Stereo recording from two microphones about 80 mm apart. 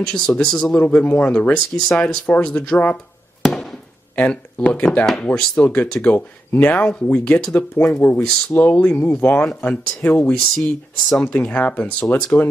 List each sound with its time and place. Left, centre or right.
0.0 s speech: centre
3.4 s fireworks: centre
4.1 s speech: centre
5.3 s speech: centre
5.7 s speech: centre